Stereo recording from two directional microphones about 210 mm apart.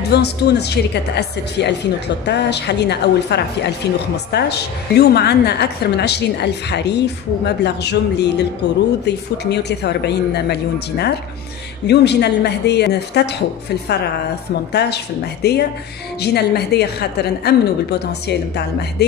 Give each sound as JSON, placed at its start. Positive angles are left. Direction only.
{"t": 0.1, "sound": "a woman's voice", "side_deg": 50}
{"t": 14.7, "sound": "a woman's voice", "side_deg": 50}